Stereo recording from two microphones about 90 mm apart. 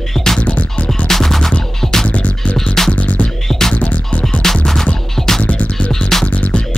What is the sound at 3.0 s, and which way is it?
Music, 15° left (ahead or behind).